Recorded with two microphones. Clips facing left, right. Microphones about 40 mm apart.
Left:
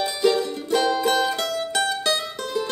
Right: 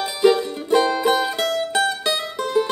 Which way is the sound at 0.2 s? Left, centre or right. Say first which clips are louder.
Right 5 dB; centre.